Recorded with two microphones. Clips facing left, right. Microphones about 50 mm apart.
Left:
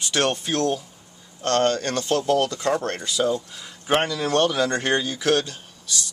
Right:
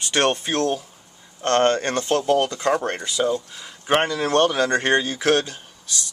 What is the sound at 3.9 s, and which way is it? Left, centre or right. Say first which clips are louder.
Speech: right 2 dB; right.